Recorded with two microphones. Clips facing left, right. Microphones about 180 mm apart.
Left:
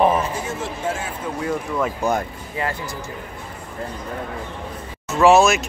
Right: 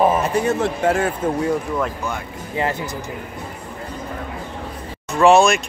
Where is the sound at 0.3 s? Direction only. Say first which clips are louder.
Right 8 dB; 65° right (ahead or behind).